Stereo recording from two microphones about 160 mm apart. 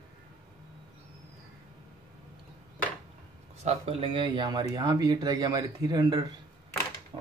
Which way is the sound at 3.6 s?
35° right (ahead or behind).